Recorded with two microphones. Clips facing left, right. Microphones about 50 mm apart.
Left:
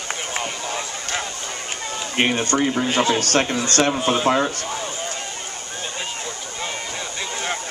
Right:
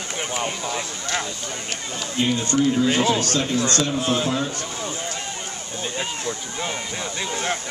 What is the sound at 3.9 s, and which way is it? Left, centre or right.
Speech, left.